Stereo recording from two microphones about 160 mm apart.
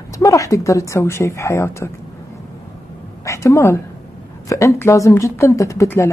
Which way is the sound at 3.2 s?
20° left (ahead or behind).